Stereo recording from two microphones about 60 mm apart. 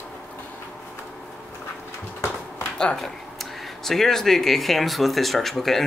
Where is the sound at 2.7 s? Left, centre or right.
Centre.